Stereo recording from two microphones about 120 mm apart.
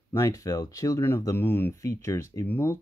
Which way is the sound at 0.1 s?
25° left (ahead or behind).